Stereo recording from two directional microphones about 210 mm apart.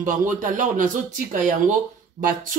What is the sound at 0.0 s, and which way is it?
Speech, 40° right (ahead or behind).